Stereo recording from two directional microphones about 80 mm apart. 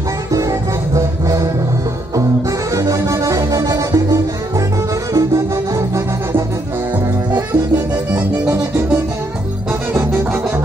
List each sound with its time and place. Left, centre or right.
0.3 s music: right
2.7 s music: right